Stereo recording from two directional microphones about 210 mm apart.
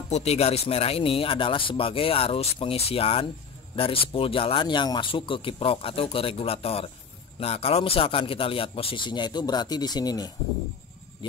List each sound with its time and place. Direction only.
0.1 s speech: 30° left (ahead or behind)